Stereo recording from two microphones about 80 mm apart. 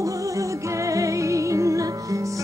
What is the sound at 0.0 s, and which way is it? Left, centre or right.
Music, right.